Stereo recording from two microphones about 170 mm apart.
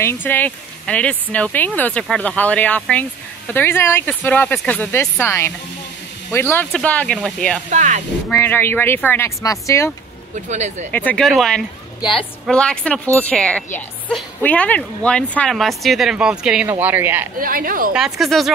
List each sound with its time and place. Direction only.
0.0 s speech: 15° left (ahead or behind)
6.5 s speech: 10° left (ahead or behind)
7.7 s speech: 45° right (ahead or behind)
8.3 s speech: 15° left (ahead or behind)
10.3 s speech: 45° right (ahead or behind)
10.9 s speech: 10° left (ahead or behind); by 17.3 s 10° right (ahead or behind)
17.4 s a woman's voice: 55° right (ahead or behind)
17.9 s speech: centre (ahead or behind)